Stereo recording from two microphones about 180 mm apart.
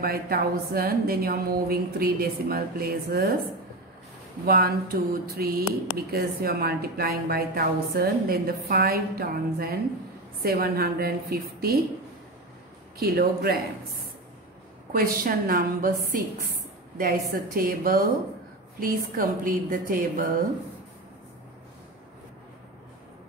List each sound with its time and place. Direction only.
0.0 s a woman's voice: 60° right (ahead or behind)
4.5 s a woman's voice: 55° right (ahead or behind)
13.0 s a woman's voice: 60° right (ahead or behind)
14.9 s a woman's voice: 55° right (ahead or behind)